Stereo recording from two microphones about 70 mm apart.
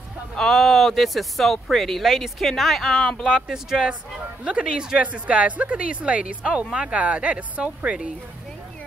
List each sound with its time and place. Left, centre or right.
0.4 s speech: centre
3.3 s a woman's voice: centre